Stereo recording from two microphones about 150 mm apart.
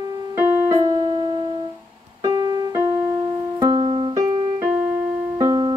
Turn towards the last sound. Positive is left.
turn(degrees=-25)  # may be behind; listen again after turning